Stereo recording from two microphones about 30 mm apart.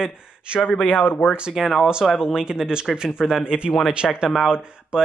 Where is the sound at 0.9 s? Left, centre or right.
Left.